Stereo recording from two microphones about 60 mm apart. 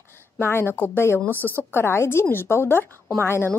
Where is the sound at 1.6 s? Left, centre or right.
Left.